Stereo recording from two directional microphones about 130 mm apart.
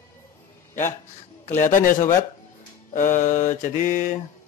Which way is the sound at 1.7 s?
90° left.